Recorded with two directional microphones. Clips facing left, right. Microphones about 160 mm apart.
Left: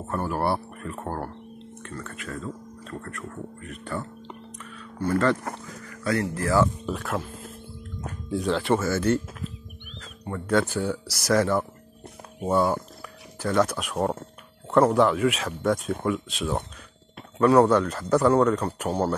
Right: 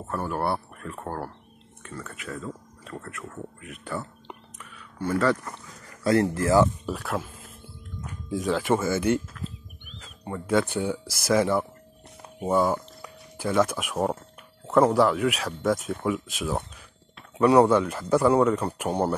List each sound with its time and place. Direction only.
0.2 s speech: centre (ahead or behind)
5.9 s speech: 25° right (ahead or behind)
6.9 s speech: 5° right (ahead or behind)
8.3 s speech: 10° right (ahead or behind)